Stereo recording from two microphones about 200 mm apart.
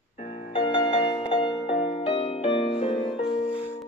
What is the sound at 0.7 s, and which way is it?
Music, 25° left (ahead or behind).